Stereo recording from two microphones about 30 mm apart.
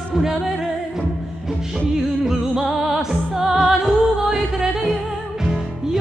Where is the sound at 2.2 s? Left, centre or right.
Centre.